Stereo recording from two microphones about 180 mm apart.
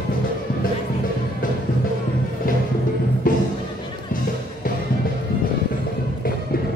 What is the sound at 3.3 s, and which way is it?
Music, 50° left (ahead or behind).